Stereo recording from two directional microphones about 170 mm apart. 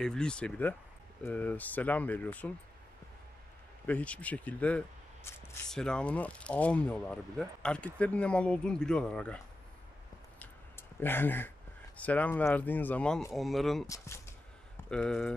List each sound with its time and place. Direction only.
0.0 s speech: 5° left (ahead or behind)
3.8 s speech: 10° left (ahead or behind)
10.4 s a sound: 10° left (ahead or behind)
12.0 s speech: 10° left (ahead or behind)
13.8 s speech: 15° left (ahead or behind)
14.9 s speech: 5° left (ahead or behind)